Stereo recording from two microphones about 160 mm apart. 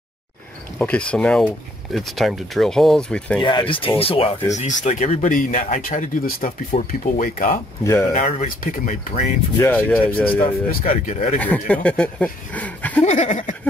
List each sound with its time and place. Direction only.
0.7 s speech: 5° left (ahead or behind)
3.4 s speech: 30° left (ahead or behind)
4.6 s speech: 45° left (ahead or behind)
7.8 s speech: 15° left (ahead or behind)
8.1 s speech: 50° left (ahead or behind)
9.6 s speech: 10° left (ahead or behind)
10.7 s speech: 55° left (ahead or behind)
11.3 s speech: 10° left (ahead or behind)
13.0 s speech: 50° left (ahead or behind)